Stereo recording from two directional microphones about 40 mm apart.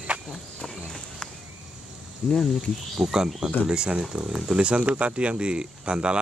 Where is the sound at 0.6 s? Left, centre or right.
Centre.